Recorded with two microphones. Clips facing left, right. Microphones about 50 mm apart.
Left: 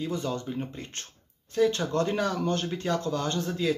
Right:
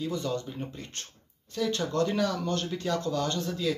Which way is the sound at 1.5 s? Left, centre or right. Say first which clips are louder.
Left 4 dB; left.